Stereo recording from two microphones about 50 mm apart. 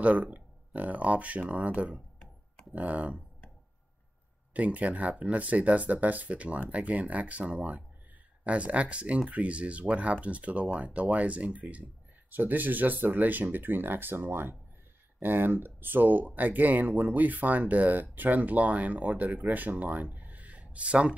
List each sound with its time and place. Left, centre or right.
0.0 s speech: right
4.6 s speech: right